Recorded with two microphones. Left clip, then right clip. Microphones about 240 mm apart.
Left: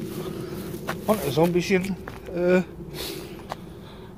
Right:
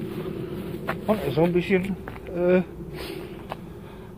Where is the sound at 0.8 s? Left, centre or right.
Centre.